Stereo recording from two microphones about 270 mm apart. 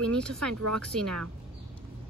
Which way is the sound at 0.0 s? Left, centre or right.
Centre.